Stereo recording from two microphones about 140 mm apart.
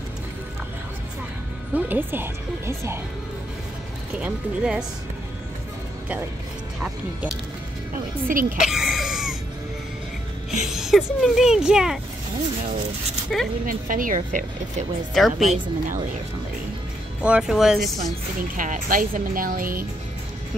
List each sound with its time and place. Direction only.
1.7 s speech: 10° right (ahead or behind)
4.2 s speech: 5° right (ahead or behind)
6.8 s speech: 10° right (ahead or behind)
7.9 s a woman's voice: 75° right (ahead or behind)
8.5 s music: 5° right (ahead or behind)
10.6 s speech: 5° right (ahead or behind)
13.3 s speech: centre (ahead or behind)
13.7 s a woman's voice: 75° right (ahead or behind)
15.1 s speech: centre (ahead or behind)
15.4 s a woman's voice: 65° right (ahead or behind)
17.2 s speech: 5° right (ahead or behind)
18.6 s speech: 75° right (ahead or behind)